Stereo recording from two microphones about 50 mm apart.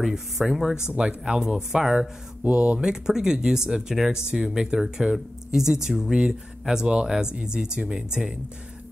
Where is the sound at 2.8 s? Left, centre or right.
Centre.